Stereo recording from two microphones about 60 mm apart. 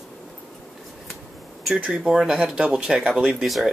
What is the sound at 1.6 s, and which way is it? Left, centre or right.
Speech, centre.